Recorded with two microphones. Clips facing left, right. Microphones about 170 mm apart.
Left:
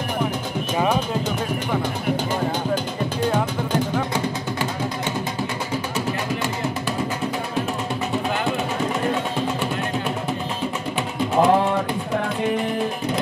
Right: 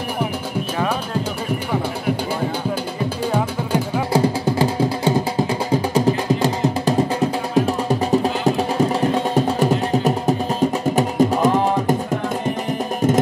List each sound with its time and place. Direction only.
3.3 s music: 10° right (ahead or behind)
4.1 s music: 35° right (ahead or behind)